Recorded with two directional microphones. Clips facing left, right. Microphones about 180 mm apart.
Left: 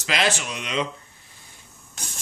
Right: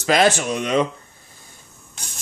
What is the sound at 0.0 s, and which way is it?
Speech, 45° right (ahead or behind).